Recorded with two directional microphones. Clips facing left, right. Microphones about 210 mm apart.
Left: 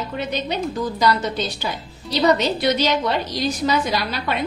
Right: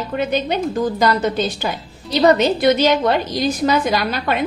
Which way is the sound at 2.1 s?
55° right (ahead or behind).